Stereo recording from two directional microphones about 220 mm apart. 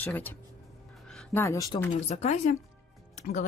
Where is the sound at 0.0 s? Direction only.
10° left (ahead or behind).